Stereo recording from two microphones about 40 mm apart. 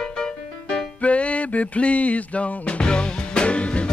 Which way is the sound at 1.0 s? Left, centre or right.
Left.